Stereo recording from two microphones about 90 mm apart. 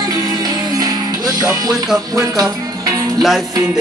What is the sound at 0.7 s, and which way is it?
Music, 45° right (ahead or behind).